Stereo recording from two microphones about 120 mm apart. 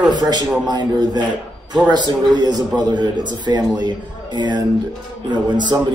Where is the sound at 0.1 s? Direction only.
35° right (ahead or behind).